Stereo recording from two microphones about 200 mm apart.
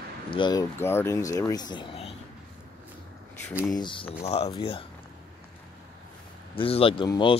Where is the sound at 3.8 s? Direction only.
25° left (ahead or behind).